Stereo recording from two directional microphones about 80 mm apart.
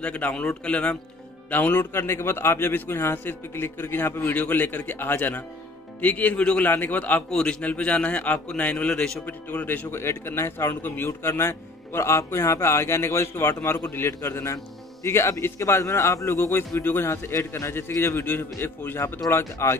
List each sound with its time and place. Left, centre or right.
0.0 s a man's voice: centre
2.0 s a man's voice: left; by 9.2 s centre
9.2 s a man's voice: left
9.8 s a man's voice: left